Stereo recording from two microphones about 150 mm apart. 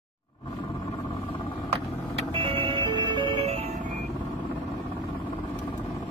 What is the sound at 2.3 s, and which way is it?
Vehicle, 35° right (ahead or behind).